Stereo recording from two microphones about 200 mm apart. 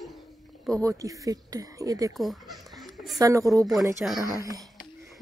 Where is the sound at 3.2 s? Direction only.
15° right (ahead or behind).